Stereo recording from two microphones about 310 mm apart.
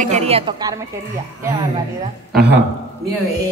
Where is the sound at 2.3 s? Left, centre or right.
Right.